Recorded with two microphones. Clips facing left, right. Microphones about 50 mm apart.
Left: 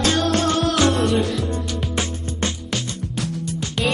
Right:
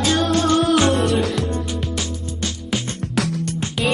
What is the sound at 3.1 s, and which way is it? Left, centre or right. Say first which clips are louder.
Music: right 6 dB; right.